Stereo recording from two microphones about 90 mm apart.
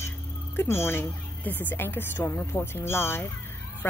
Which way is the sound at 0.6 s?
25° left (ahead or behind).